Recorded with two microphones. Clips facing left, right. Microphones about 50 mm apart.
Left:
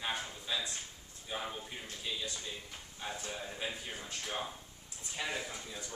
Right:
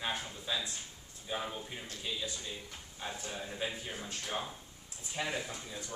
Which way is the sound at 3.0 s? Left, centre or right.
Centre.